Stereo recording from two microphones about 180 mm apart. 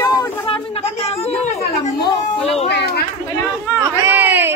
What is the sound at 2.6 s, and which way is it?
Chatter, 65° left (ahead or behind).